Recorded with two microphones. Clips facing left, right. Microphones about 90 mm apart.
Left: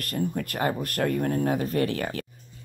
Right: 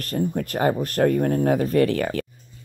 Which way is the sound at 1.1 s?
45° right (ahead or behind).